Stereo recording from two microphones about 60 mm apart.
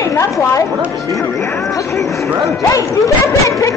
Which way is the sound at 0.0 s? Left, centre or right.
Left.